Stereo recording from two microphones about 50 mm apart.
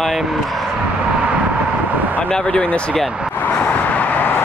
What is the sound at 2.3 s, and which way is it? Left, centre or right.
Speech, centre.